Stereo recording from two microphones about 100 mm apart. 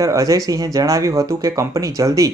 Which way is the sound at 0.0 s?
35° right (ahead or behind).